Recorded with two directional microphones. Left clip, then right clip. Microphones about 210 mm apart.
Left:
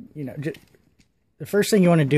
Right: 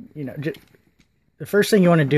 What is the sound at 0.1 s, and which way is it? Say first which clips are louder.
Speech: right 2 dB; centre (ahead or behind).